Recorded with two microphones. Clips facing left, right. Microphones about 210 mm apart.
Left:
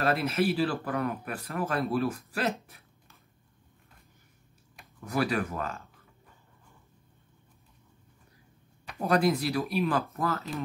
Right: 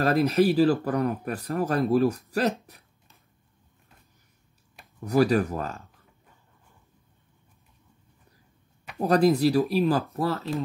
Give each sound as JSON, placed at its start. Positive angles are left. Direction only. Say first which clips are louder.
{"t": 0.0, "sound": "speech", "louder": "right 6 dB", "side_deg": -35}
{"t": 5.0, "sound": "speech", "louder": "right 7 dB", "side_deg": -35}
{"t": 9.0, "sound": "speech", "louder": "right 5 dB", "side_deg": -35}